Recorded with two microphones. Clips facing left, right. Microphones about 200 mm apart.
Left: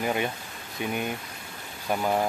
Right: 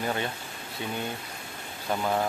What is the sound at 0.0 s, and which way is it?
Speech, 15° left (ahead or behind).